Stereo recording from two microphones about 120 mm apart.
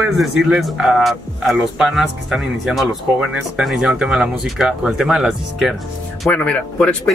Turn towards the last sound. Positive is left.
turn(degrees=10)  # may be behind; listen again after turning